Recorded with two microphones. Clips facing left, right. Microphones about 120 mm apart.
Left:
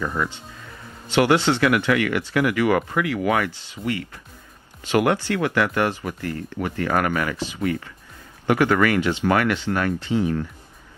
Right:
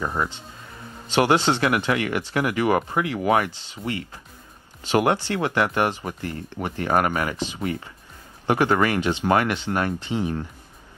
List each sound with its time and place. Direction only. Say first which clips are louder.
0.0 s speech: even; 25° right (ahead or behind)